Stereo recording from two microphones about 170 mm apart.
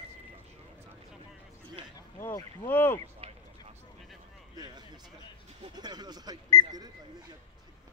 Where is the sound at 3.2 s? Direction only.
35° right (ahead or behind).